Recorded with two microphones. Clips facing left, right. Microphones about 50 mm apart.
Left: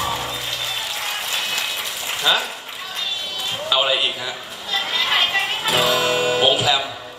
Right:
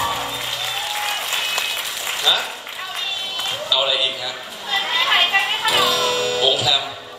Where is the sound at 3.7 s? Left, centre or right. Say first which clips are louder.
Left 1 dB; left.